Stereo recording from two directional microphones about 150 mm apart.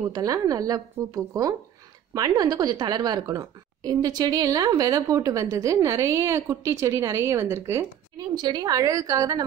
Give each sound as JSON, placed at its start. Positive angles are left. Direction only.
{"t": 0.0, "sound": "a woman's voice", "side_deg": -25}
{"t": 8.4, "sound": "a woman's voice", "side_deg": -30}